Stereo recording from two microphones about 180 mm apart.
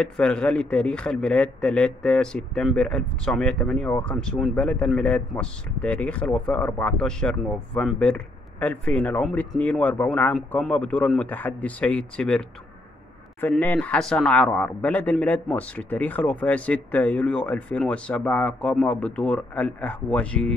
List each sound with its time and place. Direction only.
0.0 s a man's voice: 5° left (ahead or behind)